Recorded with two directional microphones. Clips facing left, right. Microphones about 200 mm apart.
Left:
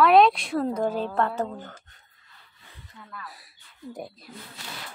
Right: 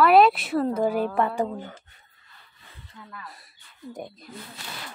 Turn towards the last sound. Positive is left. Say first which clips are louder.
# even
turn(degrees=5)  # may be behind; listen again after turning